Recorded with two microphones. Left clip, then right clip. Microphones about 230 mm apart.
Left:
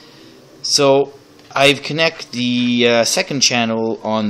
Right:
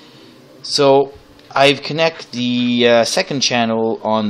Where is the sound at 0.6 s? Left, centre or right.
Centre.